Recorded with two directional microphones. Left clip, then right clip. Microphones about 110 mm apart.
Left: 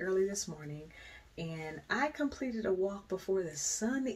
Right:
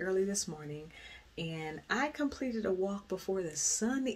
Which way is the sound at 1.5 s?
25° right (ahead or behind).